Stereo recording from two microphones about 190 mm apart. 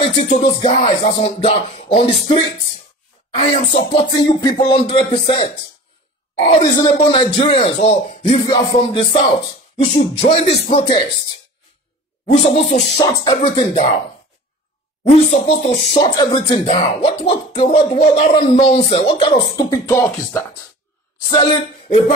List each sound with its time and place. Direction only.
0.0 s music: 30° left (ahead or behind)
3.3 s speech: 30° left (ahead or behind)
12.3 s music: 35° left (ahead or behind)
13.0 s speech: 20° left (ahead or behind)
13.6 s music: 30° left (ahead or behind)
15.0 s music: 35° left (ahead or behind)
16.7 s speech: 30° left (ahead or behind)
21.3 s speech: 30° left (ahead or behind)